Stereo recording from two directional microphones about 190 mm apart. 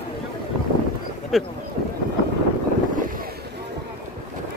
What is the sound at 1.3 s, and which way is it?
Speech, centre (ahead or behind).